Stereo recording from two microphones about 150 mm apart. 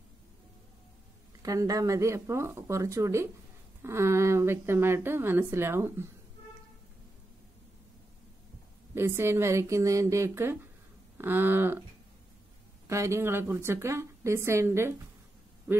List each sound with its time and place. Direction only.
1.4 s speech: 20° right (ahead or behind)
8.9 s speech: 15° right (ahead or behind)
12.8 s speech: 20° right (ahead or behind)